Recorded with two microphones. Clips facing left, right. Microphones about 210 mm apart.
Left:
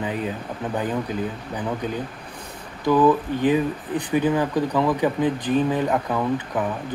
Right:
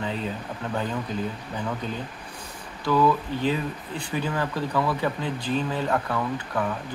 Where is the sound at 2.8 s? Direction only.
15° left (ahead or behind).